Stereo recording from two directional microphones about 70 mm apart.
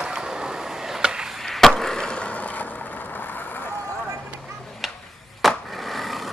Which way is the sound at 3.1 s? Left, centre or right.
Left.